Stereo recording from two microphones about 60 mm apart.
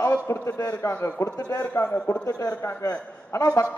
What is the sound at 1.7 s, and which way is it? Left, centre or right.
Speech, left.